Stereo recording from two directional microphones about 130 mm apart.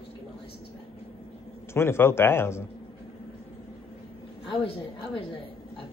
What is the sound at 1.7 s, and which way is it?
Speech, 20° left (ahead or behind).